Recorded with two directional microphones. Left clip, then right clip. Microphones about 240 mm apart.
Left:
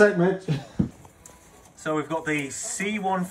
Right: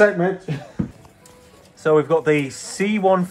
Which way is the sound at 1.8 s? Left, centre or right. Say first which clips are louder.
Right 11 dB; centre.